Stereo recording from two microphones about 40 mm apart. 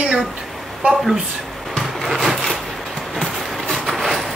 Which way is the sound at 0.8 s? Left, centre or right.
Centre.